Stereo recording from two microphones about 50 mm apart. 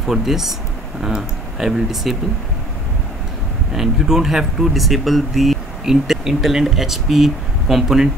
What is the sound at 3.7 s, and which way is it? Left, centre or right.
Speech, centre.